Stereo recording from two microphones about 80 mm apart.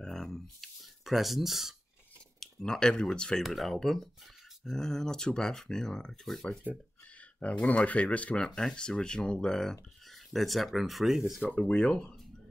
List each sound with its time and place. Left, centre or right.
0.0 s a sound: centre
2.4 s speech: centre
11.4 s speech: centre